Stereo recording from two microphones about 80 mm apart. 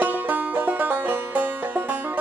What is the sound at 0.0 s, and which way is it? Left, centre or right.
Music, right.